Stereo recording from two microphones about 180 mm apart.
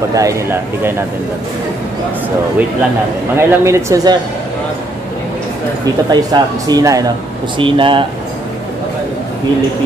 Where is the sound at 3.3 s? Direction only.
15° right (ahead or behind).